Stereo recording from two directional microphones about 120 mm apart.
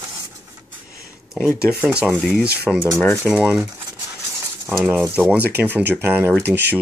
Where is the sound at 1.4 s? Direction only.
20° left (ahead or behind).